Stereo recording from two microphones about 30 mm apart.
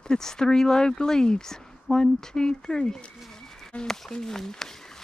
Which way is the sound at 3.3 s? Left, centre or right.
Centre.